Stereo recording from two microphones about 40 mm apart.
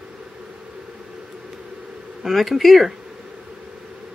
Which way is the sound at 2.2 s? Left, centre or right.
Centre.